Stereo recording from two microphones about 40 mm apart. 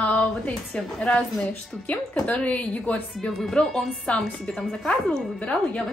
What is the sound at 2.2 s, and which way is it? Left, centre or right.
Speech, left.